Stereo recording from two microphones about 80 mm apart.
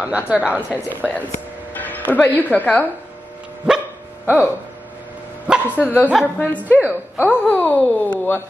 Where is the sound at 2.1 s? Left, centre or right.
Left.